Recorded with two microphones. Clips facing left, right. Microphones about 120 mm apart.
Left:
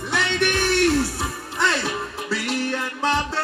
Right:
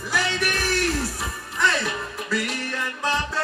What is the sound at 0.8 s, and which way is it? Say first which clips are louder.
Music: left 6 dB; 30° left (ahead or behind).